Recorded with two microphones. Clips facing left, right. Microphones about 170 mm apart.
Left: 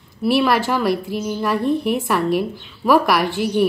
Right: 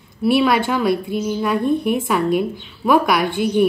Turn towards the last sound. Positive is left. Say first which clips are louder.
# right 1 dB
turn(degrees=0)  # may be behind; listen again after turning